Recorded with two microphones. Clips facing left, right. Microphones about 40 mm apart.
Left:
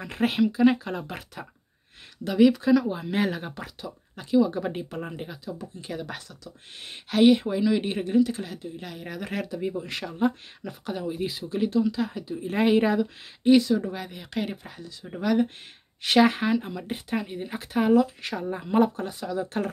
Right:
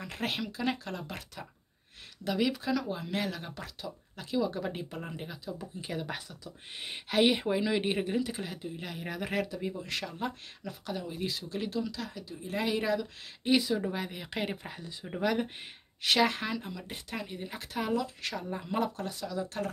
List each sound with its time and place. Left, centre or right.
0.0 s speech: centre
2.2 s speech: centre
5.6 s speech: centre; by 12.4 s left
12.4 s speech: left
13.4 s speech: centre
15.0 s speech: centre
16.0 s speech: centre; by 19.7 s left